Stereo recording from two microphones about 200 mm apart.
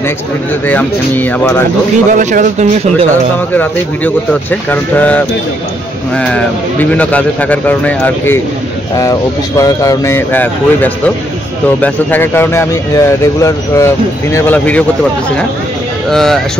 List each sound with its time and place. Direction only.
0.7 s speech: 10° left (ahead or behind)
2.1 s speech: 40° right (ahead or behind)
3.5 s speech: 10° left (ahead or behind)
9.6 s speech: 15° left (ahead or behind)
16.1 s speech: centre (ahead or behind)